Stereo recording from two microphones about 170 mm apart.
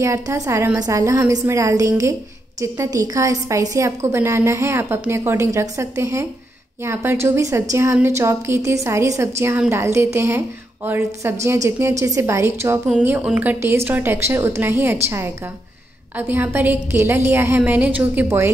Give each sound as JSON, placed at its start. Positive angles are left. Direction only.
{"t": 0.0, "sound": "a woman's voice", "side_deg": -15}